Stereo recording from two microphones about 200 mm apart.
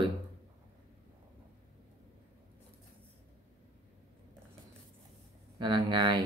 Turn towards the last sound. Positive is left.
turn(degrees=-25)  # may be behind; listen again after turning